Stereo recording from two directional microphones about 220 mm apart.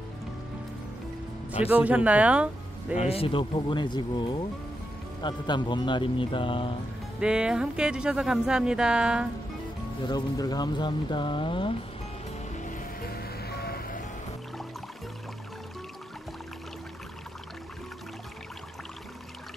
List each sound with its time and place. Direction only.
1.7 s speech: 5° right (ahead or behind)
3.0 s speech: 25° left (ahead or behind)
7.2 s speech: 5° right (ahead or behind)
10.0 s speech: 20° left (ahead or behind)
12.5 s music: 35° left (ahead or behind)